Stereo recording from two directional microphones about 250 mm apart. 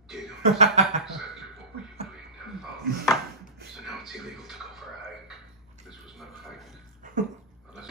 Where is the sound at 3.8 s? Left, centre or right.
Centre.